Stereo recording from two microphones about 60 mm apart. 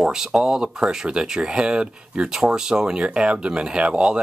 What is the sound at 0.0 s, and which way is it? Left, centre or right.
Speech, centre.